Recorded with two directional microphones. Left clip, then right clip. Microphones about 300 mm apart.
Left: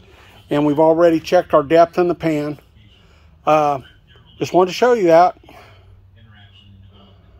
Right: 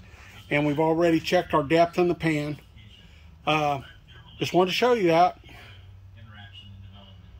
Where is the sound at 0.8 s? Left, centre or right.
Centre.